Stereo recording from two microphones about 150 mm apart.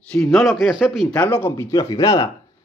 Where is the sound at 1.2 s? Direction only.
10° left (ahead or behind).